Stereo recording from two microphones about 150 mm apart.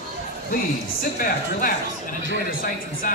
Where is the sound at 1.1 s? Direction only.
65° left (ahead or behind).